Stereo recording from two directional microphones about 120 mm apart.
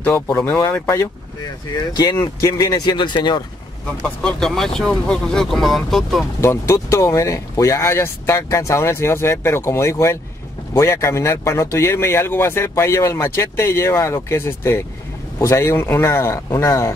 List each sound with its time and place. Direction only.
0.0 s speech: 20° left (ahead or behind)
2.1 s speech: 25° left (ahead or behind)
4.0 s speech: 5° left (ahead or behind)
6.4 s speech: 20° left (ahead or behind)